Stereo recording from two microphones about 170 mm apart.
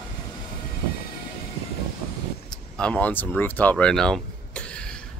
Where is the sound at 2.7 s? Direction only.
5° left (ahead or behind).